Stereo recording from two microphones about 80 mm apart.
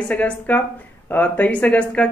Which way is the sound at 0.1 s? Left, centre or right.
Centre.